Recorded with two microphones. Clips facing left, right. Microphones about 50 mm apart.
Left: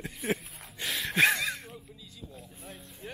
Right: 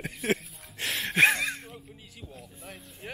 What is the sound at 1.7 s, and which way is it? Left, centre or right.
Music, right.